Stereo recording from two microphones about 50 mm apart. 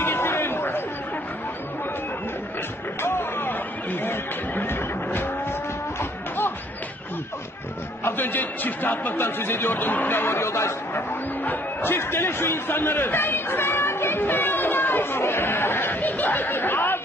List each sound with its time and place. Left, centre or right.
0.0 s chatter: left
3.0 s a sound: left
4.0 s music: left
8.0 s a man's voice: left
11.0 s speech: left